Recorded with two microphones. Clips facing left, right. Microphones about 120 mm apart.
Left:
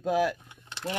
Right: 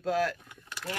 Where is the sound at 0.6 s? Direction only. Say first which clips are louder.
Left 3 dB; 25° left (ahead or behind).